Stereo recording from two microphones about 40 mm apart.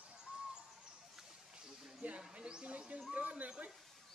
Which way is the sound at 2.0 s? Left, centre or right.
Right.